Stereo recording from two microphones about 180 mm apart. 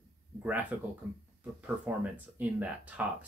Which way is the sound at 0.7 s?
10° right (ahead or behind).